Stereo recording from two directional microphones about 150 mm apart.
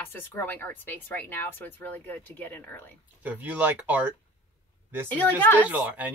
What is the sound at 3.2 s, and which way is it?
Speech, 10° right (ahead or behind).